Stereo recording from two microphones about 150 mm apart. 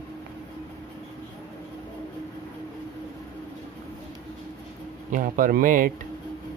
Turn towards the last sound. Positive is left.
turn(degrees=-65)  # may be behind; listen again after turning